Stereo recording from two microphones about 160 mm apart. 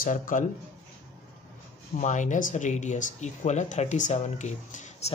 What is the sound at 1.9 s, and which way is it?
Speech, 50° left (ahead or behind).